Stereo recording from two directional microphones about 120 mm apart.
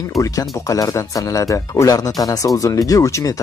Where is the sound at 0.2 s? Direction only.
30° left (ahead or behind).